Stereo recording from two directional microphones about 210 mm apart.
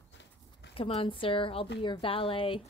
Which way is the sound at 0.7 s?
25° left (ahead or behind).